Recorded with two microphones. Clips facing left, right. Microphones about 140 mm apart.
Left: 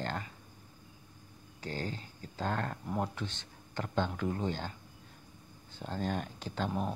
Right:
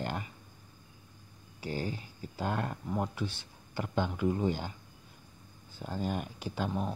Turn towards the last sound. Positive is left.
turn(degrees=-10)  # may be behind; listen again after turning